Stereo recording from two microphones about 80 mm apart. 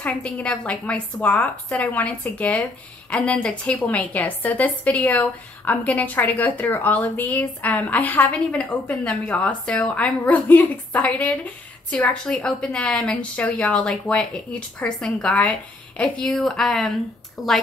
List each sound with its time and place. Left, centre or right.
0.0 s a woman's voice: centre
16.3 s speech: centre